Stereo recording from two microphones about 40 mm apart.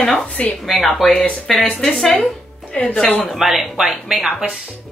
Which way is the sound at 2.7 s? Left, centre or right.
Left.